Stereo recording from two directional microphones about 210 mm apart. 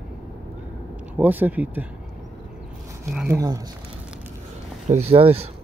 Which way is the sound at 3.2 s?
15° right (ahead or behind).